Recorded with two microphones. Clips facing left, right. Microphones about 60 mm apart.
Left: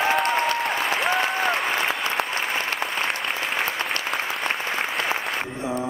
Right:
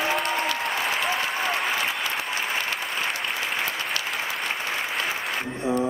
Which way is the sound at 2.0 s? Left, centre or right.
Left.